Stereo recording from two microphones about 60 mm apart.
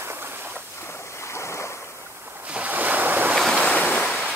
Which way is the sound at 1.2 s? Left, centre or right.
Left.